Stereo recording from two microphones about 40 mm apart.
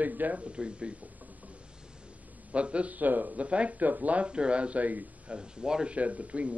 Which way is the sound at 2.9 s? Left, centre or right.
Right.